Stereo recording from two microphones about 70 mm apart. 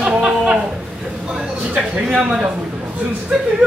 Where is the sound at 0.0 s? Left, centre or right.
Centre.